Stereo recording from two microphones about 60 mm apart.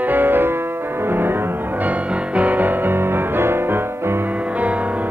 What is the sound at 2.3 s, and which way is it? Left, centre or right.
Music, right.